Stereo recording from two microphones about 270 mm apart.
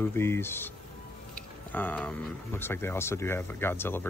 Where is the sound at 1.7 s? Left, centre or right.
Centre.